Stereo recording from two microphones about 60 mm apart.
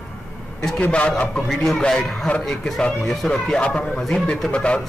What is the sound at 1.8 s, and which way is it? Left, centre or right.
Speech, centre.